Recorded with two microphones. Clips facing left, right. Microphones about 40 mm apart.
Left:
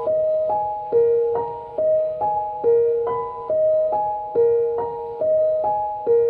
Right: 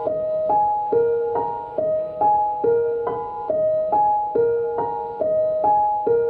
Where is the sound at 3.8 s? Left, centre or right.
Right.